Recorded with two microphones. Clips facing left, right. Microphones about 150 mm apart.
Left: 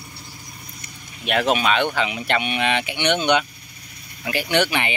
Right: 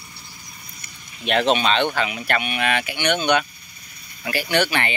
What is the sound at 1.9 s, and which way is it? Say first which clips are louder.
Speech: left 1 dB; 20° left (ahead or behind).